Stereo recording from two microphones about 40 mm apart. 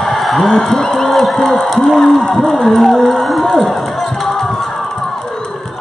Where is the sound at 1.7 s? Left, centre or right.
Centre.